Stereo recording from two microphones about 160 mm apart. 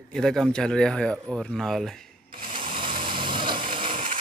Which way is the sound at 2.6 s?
30° right (ahead or behind).